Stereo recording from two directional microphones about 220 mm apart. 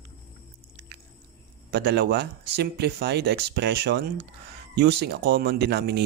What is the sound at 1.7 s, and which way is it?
Speech, 45° right (ahead or behind).